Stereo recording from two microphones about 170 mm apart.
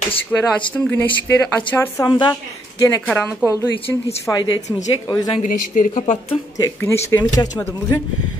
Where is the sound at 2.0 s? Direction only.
30° left (ahead or behind).